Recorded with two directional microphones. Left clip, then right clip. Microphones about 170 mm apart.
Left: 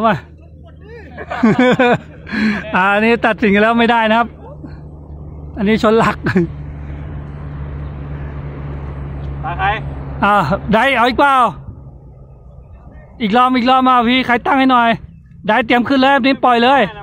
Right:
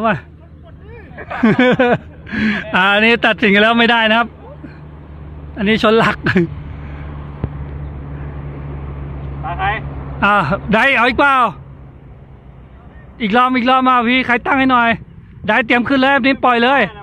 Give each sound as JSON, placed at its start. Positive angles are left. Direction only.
{"t": 1.1, "sound": "a sound", "side_deg": -25}
{"t": 1.4, "sound": "speech", "side_deg": 0}
{"t": 7.2, "sound": "vehicle", "side_deg": -45}
{"t": 9.4, "sound": "vehicle", "side_deg": -25}
{"t": 10.2, "sound": "a man's voice", "side_deg": 10}
{"t": 13.2, "sound": "a man's voice", "side_deg": 10}